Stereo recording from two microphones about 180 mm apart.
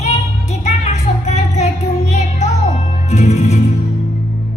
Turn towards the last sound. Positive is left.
turn(degrees=40)  # may be behind; listen again after turning